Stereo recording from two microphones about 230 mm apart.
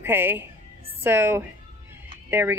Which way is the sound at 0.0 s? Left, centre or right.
Centre.